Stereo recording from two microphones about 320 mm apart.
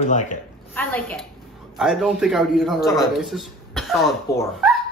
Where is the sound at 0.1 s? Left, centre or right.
Left.